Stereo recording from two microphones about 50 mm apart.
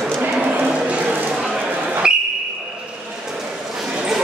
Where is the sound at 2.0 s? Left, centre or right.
Centre.